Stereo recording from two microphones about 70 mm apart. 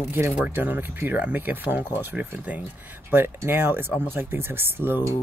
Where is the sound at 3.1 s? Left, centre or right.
Right.